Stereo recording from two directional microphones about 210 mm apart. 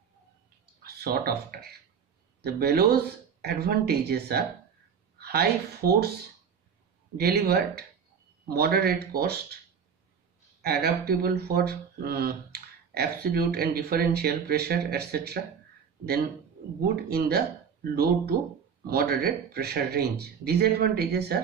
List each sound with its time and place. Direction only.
0.8 s speech: 50° right (ahead or behind)
7.2 s speech: 45° right (ahead or behind)
10.6 s speech: 50° right (ahead or behind)
16.8 s speech: 45° right (ahead or behind)
18.9 s speech: 50° right (ahead or behind)